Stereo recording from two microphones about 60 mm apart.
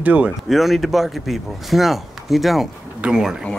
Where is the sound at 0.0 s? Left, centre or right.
Right.